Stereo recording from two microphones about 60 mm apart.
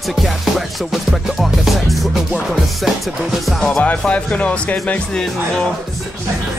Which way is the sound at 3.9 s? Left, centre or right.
Left.